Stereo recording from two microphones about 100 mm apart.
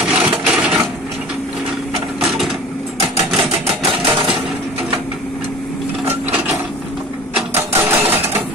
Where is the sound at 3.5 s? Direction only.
85° right.